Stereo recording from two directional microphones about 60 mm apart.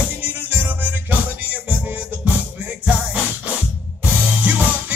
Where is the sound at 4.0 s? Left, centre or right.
Right.